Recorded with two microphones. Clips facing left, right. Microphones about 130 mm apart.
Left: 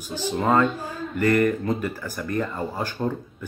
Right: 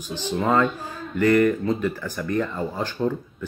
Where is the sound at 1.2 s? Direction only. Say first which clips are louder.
Right 2 dB; 45° left (ahead or behind).